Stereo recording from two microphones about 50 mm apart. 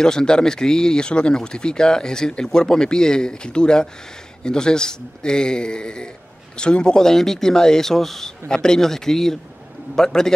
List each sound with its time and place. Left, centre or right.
0.0 s speech: centre